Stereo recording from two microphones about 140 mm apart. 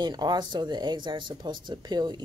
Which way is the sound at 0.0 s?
30° right (ahead or behind).